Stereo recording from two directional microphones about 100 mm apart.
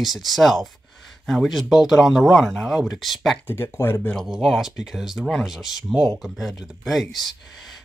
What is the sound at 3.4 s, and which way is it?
Speech, 25° left (ahead or behind).